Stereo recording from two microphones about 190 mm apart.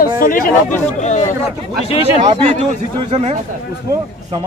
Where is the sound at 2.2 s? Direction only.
35° right (ahead or behind).